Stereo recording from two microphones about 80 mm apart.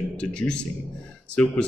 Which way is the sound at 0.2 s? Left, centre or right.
Centre.